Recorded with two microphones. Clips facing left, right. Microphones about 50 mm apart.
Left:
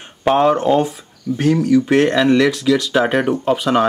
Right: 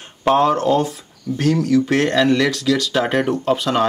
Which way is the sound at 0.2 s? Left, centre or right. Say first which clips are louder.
Left 1 dB; centre.